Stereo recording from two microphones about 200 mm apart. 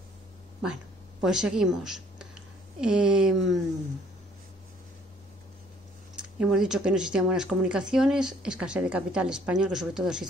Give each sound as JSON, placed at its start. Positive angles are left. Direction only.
{"t": 1.2, "sound": "a woman's voice", "side_deg": -5}
{"t": 6.1, "sound": "speech", "side_deg": -5}